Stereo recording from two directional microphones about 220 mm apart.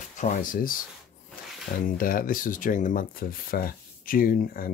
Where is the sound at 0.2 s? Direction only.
35° left (ahead or behind).